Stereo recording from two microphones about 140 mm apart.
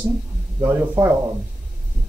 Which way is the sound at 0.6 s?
20° right (ahead or behind).